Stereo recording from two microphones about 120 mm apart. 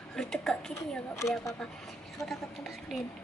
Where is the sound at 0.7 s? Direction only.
25° left (ahead or behind).